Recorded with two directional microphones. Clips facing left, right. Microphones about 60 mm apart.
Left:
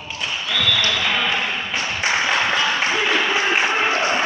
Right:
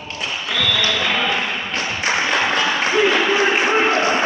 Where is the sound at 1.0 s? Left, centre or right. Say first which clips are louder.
Right 1 dB; centre.